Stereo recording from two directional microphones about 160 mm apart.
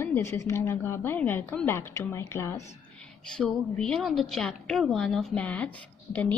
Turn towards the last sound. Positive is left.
turn(degrees=10)  # may be behind; listen again after turning